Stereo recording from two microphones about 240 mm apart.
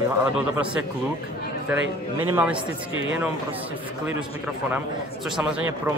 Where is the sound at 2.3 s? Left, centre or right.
Centre.